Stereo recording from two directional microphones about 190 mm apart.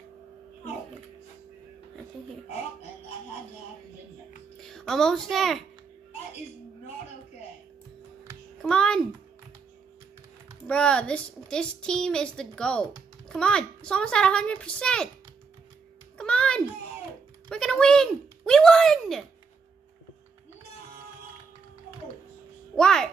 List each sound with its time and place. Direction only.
4.6 s a child's voice: centre (ahead or behind)
8.6 s a child's voice: 5° left (ahead or behind)
10.7 s a woman's voice: 5° left (ahead or behind)
16.2 s a sound: 5° left (ahead or behind)
17.5 s speech: 5° left (ahead or behind)
22.8 s a woman's voice: 5° left (ahead or behind)